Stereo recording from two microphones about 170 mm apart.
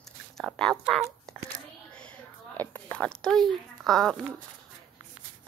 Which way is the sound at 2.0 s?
5° left (ahead or behind).